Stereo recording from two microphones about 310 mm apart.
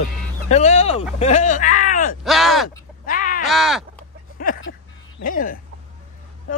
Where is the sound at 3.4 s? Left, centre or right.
Centre.